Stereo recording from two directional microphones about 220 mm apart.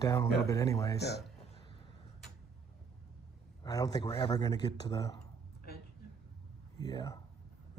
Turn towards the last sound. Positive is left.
turn(degrees=15)  # may be behind; listen again after turning